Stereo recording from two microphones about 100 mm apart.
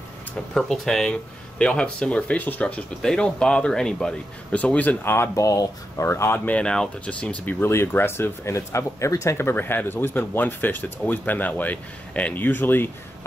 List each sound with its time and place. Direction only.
0.6 s speech: 5° left (ahead or behind); by 12.9 s 20° left (ahead or behind)